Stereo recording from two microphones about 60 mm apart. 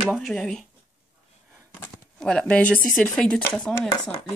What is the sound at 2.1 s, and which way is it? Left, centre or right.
Speech, centre.